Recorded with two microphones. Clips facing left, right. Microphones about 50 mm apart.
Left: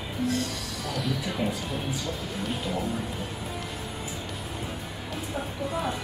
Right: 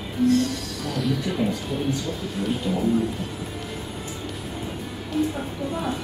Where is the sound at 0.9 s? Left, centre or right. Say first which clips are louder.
Right 5 dB; centre.